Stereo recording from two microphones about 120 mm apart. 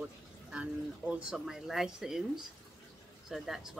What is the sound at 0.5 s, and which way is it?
Speech, 10° right (ahead or behind).